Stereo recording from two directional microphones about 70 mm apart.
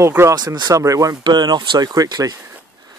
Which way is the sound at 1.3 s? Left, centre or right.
Right.